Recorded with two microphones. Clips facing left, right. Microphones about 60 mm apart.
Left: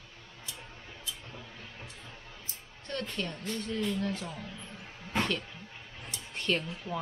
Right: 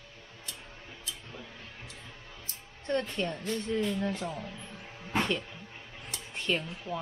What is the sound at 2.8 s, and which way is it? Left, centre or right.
A woman's voice, right.